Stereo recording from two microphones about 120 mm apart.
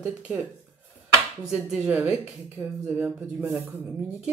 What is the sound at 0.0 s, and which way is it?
Speech, 10° right (ahead or behind).